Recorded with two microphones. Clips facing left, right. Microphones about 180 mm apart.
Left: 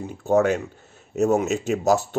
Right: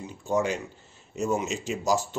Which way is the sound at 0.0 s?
55° left (ahead or behind).